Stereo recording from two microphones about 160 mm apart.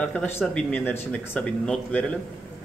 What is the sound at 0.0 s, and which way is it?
A man's voice, 10° left (ahead or behind).